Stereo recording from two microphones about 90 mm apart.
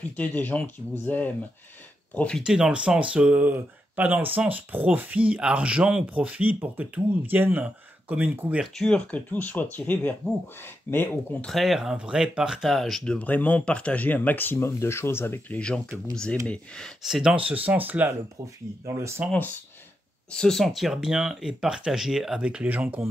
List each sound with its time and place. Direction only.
0.1 s speech: 20° left (ahead or behind)
2.4 s speech: 10° right (ahead or behind)
8.7 s speech: 10° left (ahead or behind); by 11.0 s 25° left (ahead or behind)
11.4 s speech: centre (ahead or behind)
13.0 s speech: 15° left (ahead or behind)
16.4 s speech: 10° left (ahead or behind)
17.0 s speech: 5° right (ahead or behind)
17.5 s speech: 15° right (ahead or behind)
19.2 s speech: 15° right (ahead or behind)
20.2 s speech: 5° left (ahead or behind); by 23.0 s 20° right (ahead or behind)